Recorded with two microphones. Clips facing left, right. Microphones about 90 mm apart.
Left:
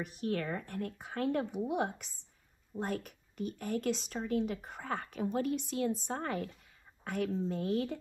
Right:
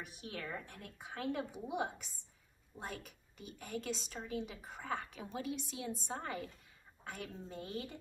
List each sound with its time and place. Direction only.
0.0 s a woman's voice: 55° left (ahead or behind)